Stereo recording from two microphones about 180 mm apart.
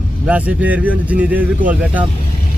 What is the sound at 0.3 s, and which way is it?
Speech, 10° right (ahead or behind).